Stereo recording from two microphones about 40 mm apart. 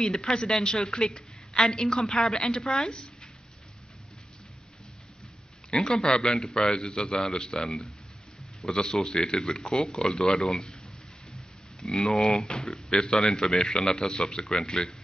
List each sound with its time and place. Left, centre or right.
0.0 s a woman's voice: centre
5.8 s a man's voice: centre
6.0 s a woman's voice: left
11.9 s a woman's voice: centre